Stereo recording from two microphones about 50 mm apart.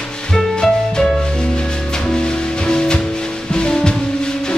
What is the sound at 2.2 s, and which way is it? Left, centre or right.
Music, centre.